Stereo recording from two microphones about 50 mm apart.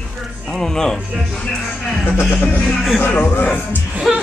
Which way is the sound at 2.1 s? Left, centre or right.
Left.